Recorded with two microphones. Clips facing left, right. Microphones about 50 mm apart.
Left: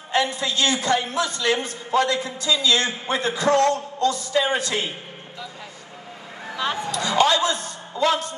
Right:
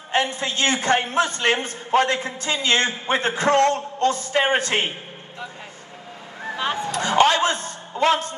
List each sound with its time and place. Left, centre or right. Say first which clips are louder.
0.1 s a man's voice: even; right
6.4 s a man's voice: right 1 dB; right